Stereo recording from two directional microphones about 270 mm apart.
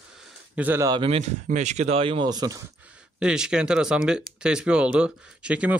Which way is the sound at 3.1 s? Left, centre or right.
Centre.